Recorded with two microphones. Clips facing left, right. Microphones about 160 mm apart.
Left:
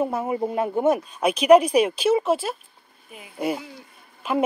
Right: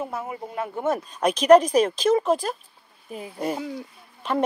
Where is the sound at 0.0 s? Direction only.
25° left (ahead or behind); by 2.5 s 5° left (ahead or behind).